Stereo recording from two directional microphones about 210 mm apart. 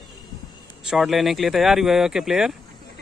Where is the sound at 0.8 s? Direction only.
Centre (ahead or behind).